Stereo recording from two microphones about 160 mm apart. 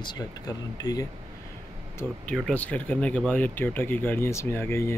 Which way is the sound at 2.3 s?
5° left (ahead or behind).